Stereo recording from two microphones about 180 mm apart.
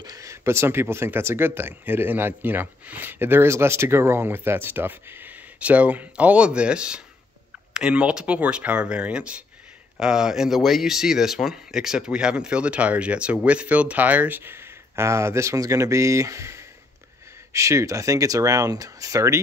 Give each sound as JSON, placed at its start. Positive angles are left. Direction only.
{"t": 0.0, "sound": "speech", "side_deg": -20}